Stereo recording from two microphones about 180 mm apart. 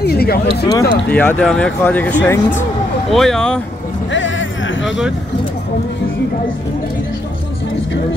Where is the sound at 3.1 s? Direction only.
Centre (ahead or behind).